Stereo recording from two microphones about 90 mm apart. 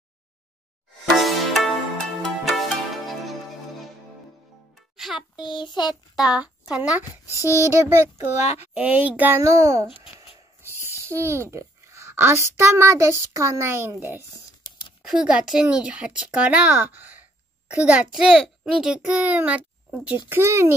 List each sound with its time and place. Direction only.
1.1 s music: centre (ahead or behind)
4.9 s music: 5° right (ahead or behind)
5.5 s a child's voice: 55° left (ahead or behind)
6.1 s speech: 10° right (ahead or behind)
7.2 s speech: 30° left (ahead or behind)
7.5 s speech: 30° right (ahead or behind)
8.7 s a child's voice: 15° right (ahead or behind)
9.3 s a child's voice: 35° right (ahead or behind)
11.0 s a child's voice: 30° right (ahead or behind)
15.0 s a child's voice: 10° right (ahead or behind)
20.2 s speech: 25° right (ahead or behind)